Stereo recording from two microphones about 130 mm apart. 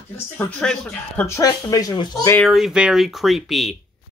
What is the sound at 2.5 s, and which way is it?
Speech, 5° right (ahead or behind).